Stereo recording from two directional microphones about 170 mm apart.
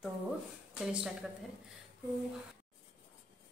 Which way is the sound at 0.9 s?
5° right (ahead or behind).